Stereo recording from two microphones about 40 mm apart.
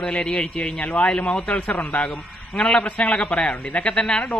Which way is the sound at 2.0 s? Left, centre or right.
Left.